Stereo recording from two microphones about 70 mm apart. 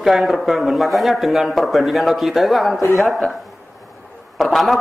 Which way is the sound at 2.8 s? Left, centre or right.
Left.